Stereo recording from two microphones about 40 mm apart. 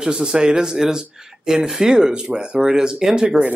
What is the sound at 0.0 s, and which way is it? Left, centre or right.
Speech, right.